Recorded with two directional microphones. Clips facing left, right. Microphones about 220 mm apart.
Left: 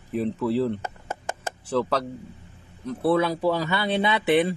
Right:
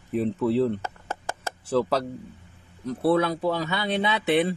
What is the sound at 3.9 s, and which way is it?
Speech, 10° left (ahead or behind).